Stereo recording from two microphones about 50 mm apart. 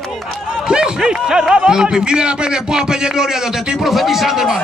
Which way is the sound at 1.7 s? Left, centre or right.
Centre.